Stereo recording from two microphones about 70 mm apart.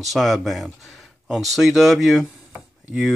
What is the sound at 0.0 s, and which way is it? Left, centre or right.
Speech, centre.